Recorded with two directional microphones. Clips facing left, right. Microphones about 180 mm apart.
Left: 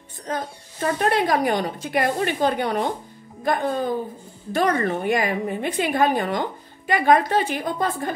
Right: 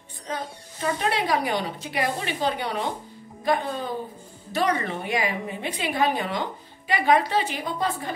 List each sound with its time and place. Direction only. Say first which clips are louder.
0.3 s speech: left 4 dB; 50° left (ahead or behind)